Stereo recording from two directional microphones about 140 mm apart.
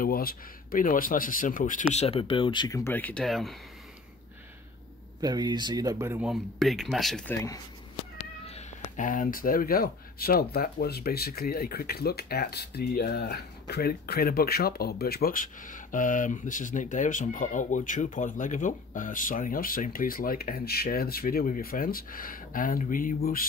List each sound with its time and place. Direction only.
0.0 s speech: 90° left; by 2.8 s 30° left (ahead or behind)
2.8 s speech: 15° left (ahead or behind)
3.3 s speech: centre (ahead or behind)
5.2 s speech: 30° right (ahead or behind)
6.2 s speech: centre (ahead or behind)
8.5 s speech: 55° left (ahead or behind); by 23.4 s 85° left